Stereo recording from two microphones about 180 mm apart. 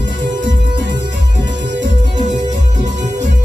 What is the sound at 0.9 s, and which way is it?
Music, 75° right (ahead or behind).